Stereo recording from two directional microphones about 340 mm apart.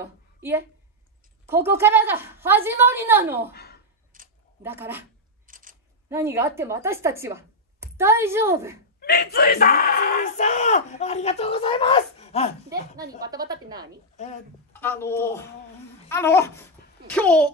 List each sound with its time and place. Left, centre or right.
0.0 s a woman's voice: centre
3.5 s a sound: left
4.1 s a sound: right
4.6 s a woman's voice: centre
5.5 s a sound: right
6.0 s speech: centre
9.0 s speech: left
12.6 s a woman's voice: centre
14.7 s speech: centre
16.1 s babbling: centre
17.1 s a child's voice: centre